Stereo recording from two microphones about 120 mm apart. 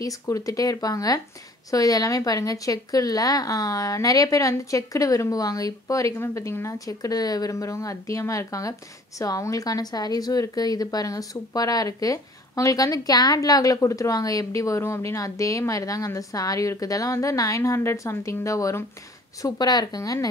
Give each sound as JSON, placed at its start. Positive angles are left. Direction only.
{"t": 0.0, "sound": "a woman's voice", "side_deg": 25}